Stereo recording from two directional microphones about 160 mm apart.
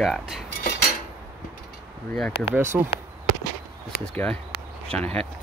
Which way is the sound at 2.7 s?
10° right (ahead or behind).